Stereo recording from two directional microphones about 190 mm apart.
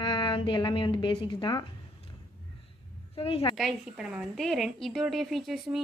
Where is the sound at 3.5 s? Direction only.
Centre (ahead or behind).